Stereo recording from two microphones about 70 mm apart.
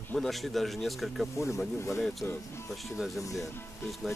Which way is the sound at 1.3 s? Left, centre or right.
Left.